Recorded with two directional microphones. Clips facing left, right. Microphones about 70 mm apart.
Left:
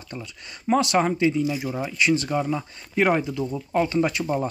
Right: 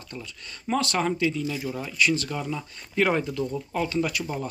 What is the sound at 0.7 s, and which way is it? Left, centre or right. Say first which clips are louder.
Speech: left 5 dB; centre.